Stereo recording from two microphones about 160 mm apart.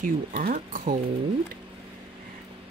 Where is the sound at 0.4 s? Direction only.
65° right (ahead or behind).